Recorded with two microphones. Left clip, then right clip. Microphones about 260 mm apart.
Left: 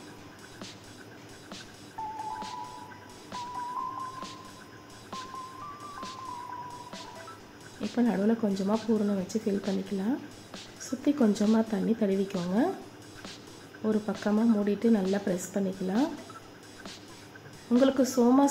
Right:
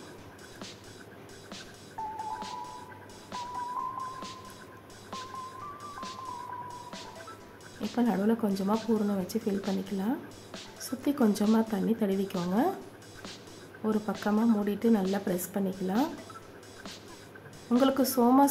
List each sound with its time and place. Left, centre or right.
2.1 s music: centre
7.8 s speech: centre
13.8 s speech: centre
17.6 s speech: centre